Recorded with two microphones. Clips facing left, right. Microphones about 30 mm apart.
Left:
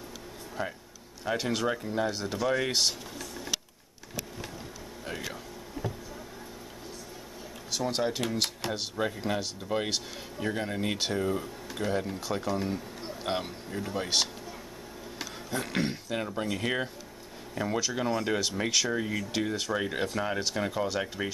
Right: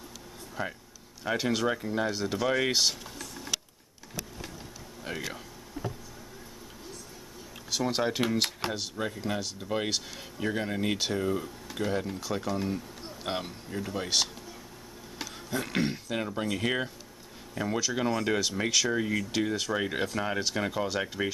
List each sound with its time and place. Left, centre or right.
0.6 s speech: centre
2.4 s speech: centre
2.7 s speech: centre
5.0 s speech: centre
7.7 s speech: centre
8.7 s speech: centre